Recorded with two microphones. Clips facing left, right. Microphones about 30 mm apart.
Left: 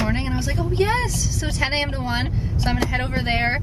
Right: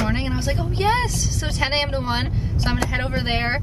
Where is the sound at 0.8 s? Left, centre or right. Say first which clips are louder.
Right 7 dB; centre.